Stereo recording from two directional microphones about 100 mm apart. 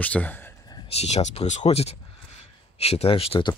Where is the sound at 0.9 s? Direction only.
90° left; by 3.4 s 70° left (ahead or behind).